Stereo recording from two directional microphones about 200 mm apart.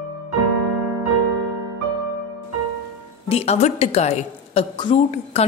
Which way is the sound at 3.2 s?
30° left (ahead or behind).